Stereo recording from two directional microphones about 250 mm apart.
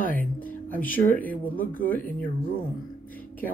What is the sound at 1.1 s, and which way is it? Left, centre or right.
Speech, centre.